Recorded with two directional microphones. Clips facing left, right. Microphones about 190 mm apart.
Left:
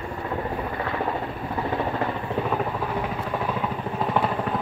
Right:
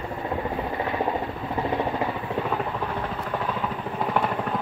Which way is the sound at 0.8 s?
20° right (ahead or behind).